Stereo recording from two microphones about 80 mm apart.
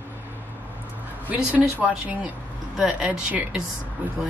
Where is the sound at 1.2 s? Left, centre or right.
Centre.